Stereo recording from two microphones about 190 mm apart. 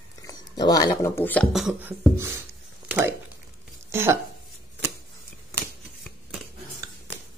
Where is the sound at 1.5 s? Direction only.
Centre (ahead or behind).